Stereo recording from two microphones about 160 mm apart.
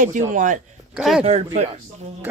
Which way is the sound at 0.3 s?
55° right (ahead or behind).